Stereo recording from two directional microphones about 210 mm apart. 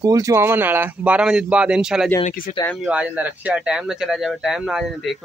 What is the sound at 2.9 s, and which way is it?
Speech, 5° right (ahead or behind).